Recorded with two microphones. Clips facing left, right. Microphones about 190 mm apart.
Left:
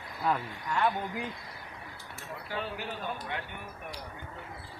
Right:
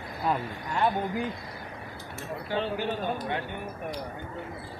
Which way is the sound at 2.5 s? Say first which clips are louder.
Right 8 dB; 30° right (ahead or behind).